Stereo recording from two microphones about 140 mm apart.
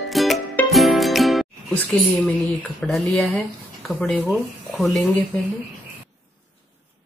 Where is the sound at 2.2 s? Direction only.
10° left (ahead or behind).